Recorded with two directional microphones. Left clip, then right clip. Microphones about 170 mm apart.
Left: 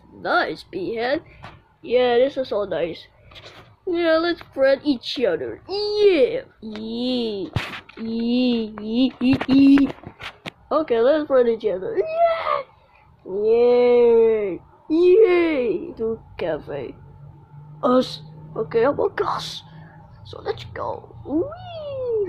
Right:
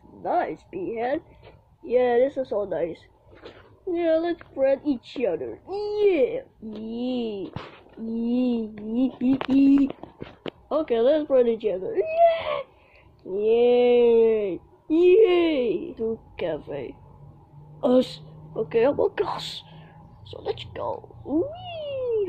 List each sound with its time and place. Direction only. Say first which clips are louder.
0.2 s a woman's voice: left 4 dB; centre (ahead or behind)
10.9 s speech: left 2 dB; 15° right (ahead or behind)
13.4 s a woman's voice: left 3 dB; 20° left (ahead or behind)
15.0 s speech: left 3 dB; 20° right (ahead or behind)
15.5 s a woman's voice: left 2 dB; 20° left (ahead or behind)
16.1 s a woman's voice: left 4 dB; 5° right (ahead or behind)
17.7 s a woman's voice: left 2 dB; 20° right (ahead or behind)
20.9 s speech: left 1 dB; centre (ahead or behind)
21.5 s a sound: left 1 dB; 20° right (ahead or behind)